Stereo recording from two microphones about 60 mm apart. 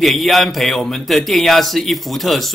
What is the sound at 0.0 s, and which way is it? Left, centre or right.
A man's voice, centre.